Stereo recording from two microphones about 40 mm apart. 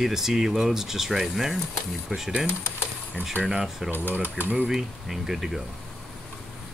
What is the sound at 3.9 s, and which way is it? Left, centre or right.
Speech, right.